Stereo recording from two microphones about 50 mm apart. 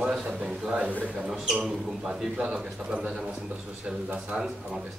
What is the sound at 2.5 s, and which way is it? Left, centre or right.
A man's voice, right.